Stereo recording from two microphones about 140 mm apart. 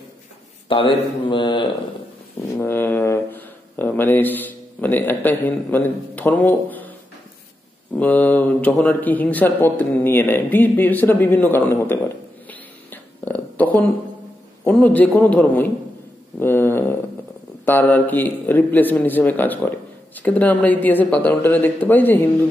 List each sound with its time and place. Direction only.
0.7 s speech: 35° left (ahead or behind)
2.6 s speech: 15° left (ahead or behind)
8.0 s a man's voice: 10° left (ahead or behind)
12.4 s a sound: 10° left (ahead or behind)
14.6 s a man's voice: 10° left (ahead or behind)